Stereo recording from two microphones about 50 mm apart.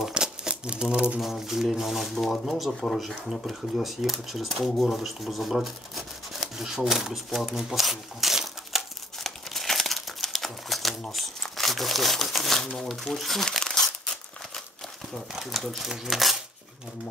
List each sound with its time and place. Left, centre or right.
0.1 s a sound: centre
1.2 s speech: centre
2.1 s speech: centre
7.2 s crumpling: centre
11.1 s speech: centre
13.5 s crumpling: centre
15.1 s speech: centre